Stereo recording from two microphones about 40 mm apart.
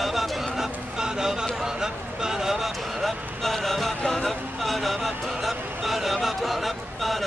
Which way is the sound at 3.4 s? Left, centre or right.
Centre.